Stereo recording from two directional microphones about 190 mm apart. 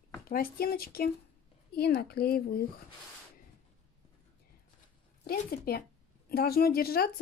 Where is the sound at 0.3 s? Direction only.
50° left (ahead or behind).